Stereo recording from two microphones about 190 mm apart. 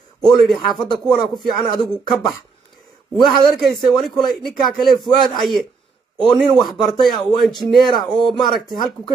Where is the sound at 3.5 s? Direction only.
Centre (ahead or behind).